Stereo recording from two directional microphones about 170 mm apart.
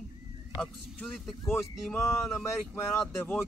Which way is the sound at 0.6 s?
Centre (ahead or behind).